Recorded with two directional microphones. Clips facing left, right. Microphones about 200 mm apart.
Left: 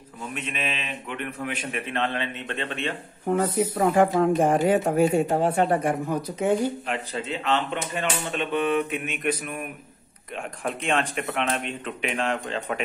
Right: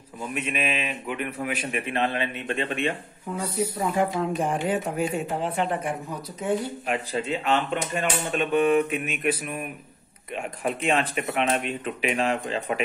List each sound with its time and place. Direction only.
0.3 s a man's voice: 10° right (ahead or behind)
3.8 s speech: 50° left (ahead or behind)
6.9 s a man's voice: 15° right (ahead or behind)
7.5 s speech: 45° right (ahead or behind)
8.7 s a man's voice: 5° right (ahead or behind)
10.6 s a man's voice: 5° right (ahead or behind)